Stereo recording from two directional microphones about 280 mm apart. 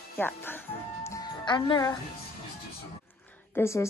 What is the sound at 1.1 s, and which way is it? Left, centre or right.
Music, centre.